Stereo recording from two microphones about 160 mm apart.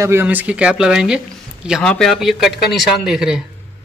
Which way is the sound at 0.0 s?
15° right (ahead or behind).